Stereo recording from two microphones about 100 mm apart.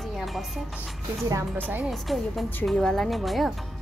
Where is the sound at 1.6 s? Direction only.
20° right (ahead or behind).